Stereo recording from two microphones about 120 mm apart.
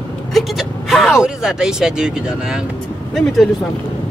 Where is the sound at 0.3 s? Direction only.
Centre (ahead or behind).